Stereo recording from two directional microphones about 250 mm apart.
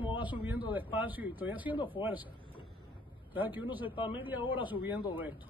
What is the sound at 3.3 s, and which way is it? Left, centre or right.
Speech, centre.